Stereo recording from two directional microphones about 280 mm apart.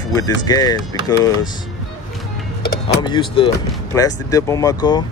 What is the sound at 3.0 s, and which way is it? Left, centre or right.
Speech, centre.